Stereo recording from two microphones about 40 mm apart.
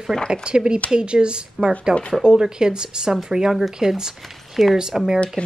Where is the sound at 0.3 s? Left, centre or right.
Right.